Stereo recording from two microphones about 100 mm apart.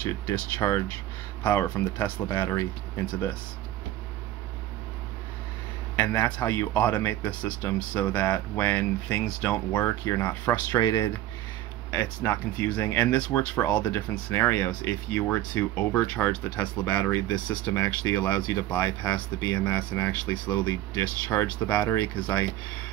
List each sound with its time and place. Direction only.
0.0 s speech: 25° left (ahead or behind)
5.9 s speech: 15° left (ahead or behind)
10.8 s speech: 35° left (ahead or behind)
11.9 s speech: 20° left (ahead or behind)
19.5 s speech: 20° left (ahead or behind)